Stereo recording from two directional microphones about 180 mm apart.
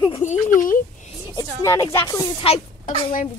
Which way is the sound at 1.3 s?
15° left (ahead or behind).